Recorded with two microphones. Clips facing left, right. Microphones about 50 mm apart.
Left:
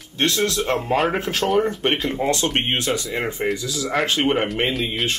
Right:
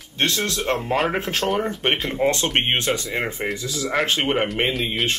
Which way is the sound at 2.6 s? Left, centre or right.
Right.